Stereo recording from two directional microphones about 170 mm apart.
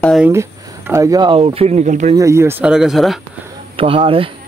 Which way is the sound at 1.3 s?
35° right (ahead or behind).